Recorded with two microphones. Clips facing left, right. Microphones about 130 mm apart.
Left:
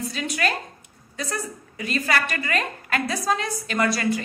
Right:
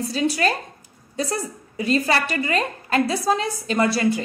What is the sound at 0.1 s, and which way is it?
A woman's voice, 30° right (ahead or behind).